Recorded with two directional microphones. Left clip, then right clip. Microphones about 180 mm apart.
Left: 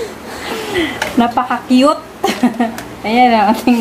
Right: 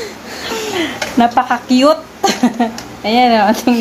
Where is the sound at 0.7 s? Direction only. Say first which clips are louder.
Left 4 dB; 40° right (ahead or behind).